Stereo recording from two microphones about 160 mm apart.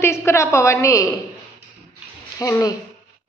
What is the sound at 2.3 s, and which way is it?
Speech, 20° left (ahead or behind).